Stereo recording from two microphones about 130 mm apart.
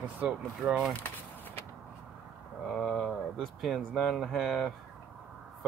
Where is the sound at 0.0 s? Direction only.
10° right (ahead or behind).